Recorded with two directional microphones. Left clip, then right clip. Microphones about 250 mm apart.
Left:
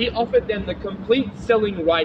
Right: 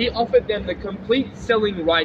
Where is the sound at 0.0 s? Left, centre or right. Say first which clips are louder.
Right 1 dB; centre.